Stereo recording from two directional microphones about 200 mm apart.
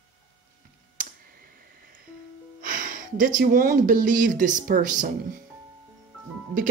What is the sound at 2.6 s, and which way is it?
Speech, 45° right (ahead or behind).